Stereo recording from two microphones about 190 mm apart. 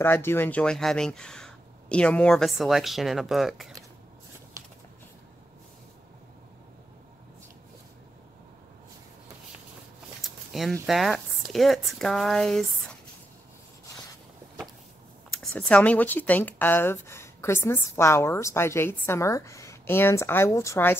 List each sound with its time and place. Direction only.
0.0 s speech: 10° left (ahead or behind)
10.2 s speech: centre (ahead or behind)
15.4 s speech: 5° left (ahead or behind)